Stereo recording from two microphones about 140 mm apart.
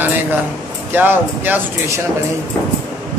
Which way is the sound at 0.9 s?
15° right (ahead or behind).